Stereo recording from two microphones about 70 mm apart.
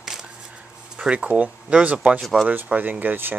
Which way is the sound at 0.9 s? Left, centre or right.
Centre.